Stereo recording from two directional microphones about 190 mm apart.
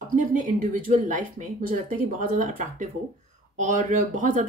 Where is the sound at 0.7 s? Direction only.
45° right (ahead or behind).